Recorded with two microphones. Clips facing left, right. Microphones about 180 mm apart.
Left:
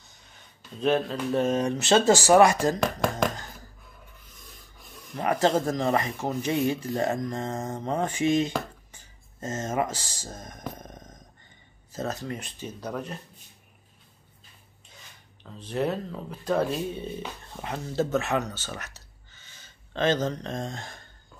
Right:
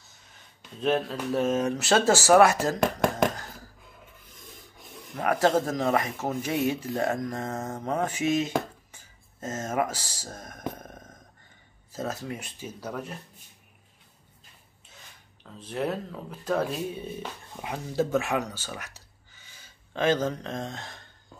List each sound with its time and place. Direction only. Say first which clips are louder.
0.7 s speech: left 2 dB; 5° right (ahead or behind)
2.8 s speech: right 2 dB; 20° right (ahead or behind)
5.1 s speech: even; centre (ahead or behind)
8.9 s a sound: left 1 dB; 5° right (ahead or behind)
10.4 s speech: right 5 dB; 5° right (ahead or behind)
15.4 s speech: left 2 dB; centre (ahead or behind)